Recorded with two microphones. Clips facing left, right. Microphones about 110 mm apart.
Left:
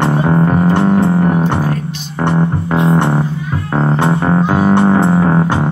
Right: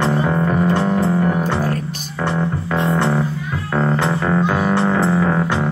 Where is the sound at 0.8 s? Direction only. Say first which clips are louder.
Left 5 dB; 60° left (ahead or behind).